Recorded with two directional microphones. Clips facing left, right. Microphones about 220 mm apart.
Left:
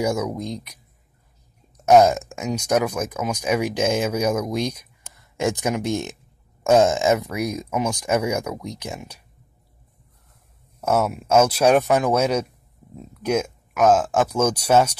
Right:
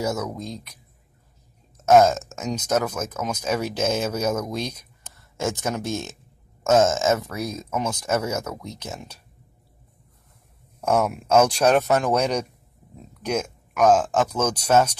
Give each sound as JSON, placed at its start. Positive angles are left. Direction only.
{"t": 0.0, "sound": "speech", "side_deg": 15}
{"t": 1.8, "sound": "speech", "side_deg": 15}
{"t": 10.8, "sound": "speech", "side_deg": 5}